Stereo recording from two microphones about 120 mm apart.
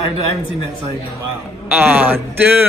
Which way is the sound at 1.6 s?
15° right (ahead or behind).